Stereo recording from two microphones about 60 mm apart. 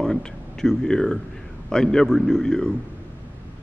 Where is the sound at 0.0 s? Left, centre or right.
Centre.